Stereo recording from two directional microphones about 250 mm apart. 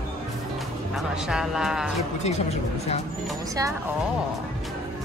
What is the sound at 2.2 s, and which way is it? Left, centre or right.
Speech, left.